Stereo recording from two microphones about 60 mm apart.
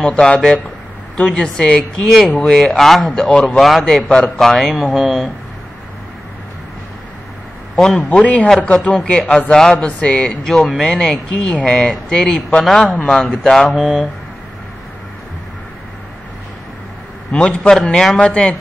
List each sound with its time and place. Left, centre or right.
0.0 s a man's voice: centre
7.7 s a man's voice: centre
8.0 s a man's voice: left; by 14.0 s centre
17.3 s a man's voice: centre